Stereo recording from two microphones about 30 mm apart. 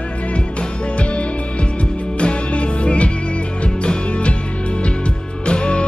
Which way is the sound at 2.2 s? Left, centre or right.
Left.